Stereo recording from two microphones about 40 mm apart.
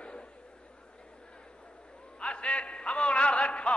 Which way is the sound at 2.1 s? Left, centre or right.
Left.